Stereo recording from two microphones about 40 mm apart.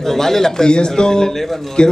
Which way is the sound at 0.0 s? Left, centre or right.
Centre.